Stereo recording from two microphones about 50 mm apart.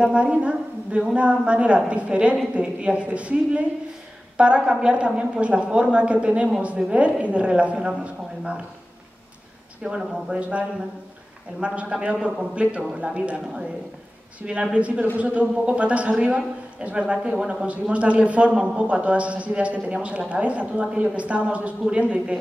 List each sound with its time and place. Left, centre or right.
0.0 s a man's voice: right
9.8 s speech: centre
10.4 s a man's voice: right
14.4 s a man's voice: right